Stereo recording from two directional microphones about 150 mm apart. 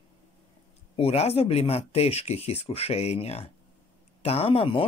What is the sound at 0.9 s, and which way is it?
Speech, 45° left (ahead or behind).